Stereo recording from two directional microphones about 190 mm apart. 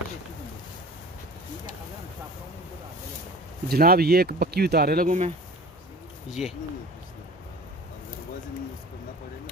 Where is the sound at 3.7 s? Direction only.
55° right (ahead or behind).